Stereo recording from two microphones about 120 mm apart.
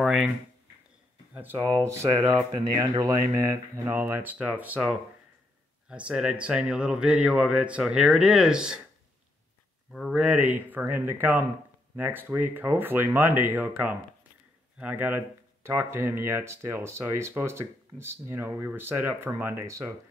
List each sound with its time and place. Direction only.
0.0 s speech: centre (ahead or behind)
1.3 s speech: 15° right (ahead or behind)
2.0 s speech: 40° right (ahead or behind); by 8.8 s 5° right (ahead or behind)
9.9 s speech: 5° right (ahead or behind); by 19.9 s 25° right (ahead or behind)